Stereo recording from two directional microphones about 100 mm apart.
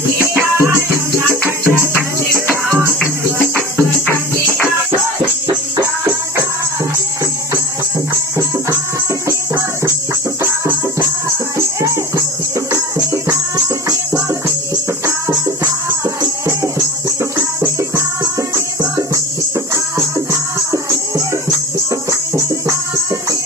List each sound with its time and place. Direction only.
0.2 s music: 25° right (ahead or behind)
10.4 s music: 25° right (ahead or behind)
15.0 s music: 30° right (ahead or behind)
22.1 s music: 30° right (ahead or behind)